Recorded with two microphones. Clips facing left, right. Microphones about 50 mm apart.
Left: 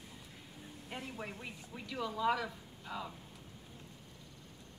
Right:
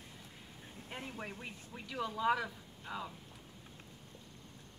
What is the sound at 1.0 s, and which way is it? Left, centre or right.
A woman's voice, centre.